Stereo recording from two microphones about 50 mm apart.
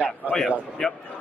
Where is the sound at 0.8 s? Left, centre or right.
Centre.